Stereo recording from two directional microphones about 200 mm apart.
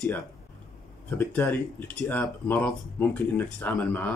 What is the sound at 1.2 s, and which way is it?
Speech, 10° left (ahead or behind).